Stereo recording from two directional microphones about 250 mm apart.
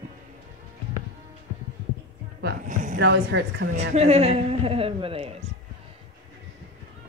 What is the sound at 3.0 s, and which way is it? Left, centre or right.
Speech, right.